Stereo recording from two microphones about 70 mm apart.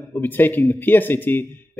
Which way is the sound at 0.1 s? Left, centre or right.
Left.